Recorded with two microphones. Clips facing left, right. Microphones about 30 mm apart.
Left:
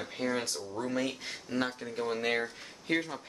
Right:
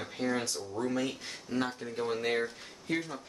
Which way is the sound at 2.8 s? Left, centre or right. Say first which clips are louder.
Left 2 dB; left.